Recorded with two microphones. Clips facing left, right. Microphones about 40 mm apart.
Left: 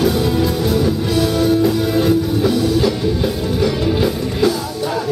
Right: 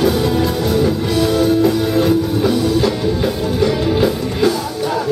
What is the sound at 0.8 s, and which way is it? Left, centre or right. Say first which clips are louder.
Music: right 3 dB; centre.